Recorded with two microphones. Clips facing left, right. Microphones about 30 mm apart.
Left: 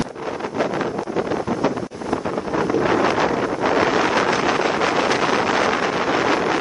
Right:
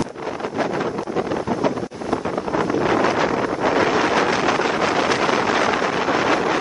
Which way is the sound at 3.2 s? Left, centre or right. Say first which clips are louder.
Even; right.